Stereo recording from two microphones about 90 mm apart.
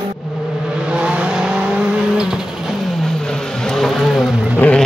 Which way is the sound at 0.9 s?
10° right (ahead or behind).